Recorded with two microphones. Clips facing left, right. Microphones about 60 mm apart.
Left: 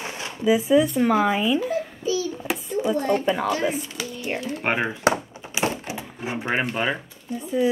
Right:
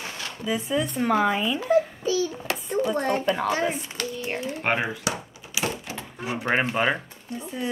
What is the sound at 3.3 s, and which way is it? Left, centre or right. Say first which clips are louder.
Speech: left 2 dB; centre.